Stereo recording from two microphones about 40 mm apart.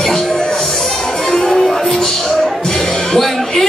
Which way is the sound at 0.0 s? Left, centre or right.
Centre.